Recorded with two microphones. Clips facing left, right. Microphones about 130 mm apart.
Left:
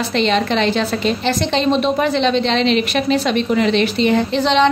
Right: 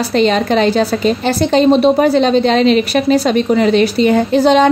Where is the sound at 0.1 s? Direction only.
40° right (ahead or behind).